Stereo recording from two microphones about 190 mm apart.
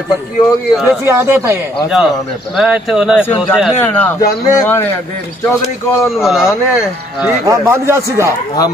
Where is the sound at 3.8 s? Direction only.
10° left (ahead or behind).